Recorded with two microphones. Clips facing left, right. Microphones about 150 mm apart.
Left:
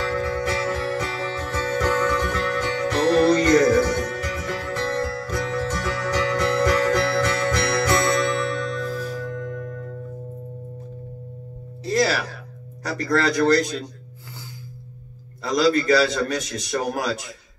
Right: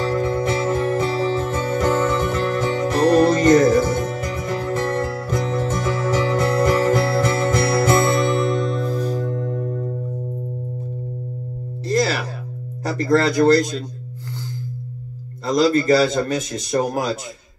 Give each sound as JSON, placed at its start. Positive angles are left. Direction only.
{"t": 0.0, "sound": "music", "side_deg": -20}
{"t": 11.8, "sound": "music", "side_deg": 0}
{"t": 12.8, "sound": "speech", "side_deg": -25}
{"t": 15.4, "sound": "a man's voice", "side_deg": -25}